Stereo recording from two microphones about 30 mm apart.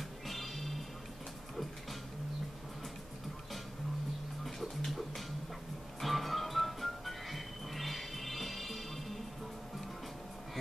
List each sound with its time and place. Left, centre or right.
0.3 s music: centre
4.5 s music: centre